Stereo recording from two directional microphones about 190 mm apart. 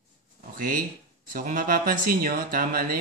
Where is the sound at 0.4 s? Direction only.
45° right (ahead or behind).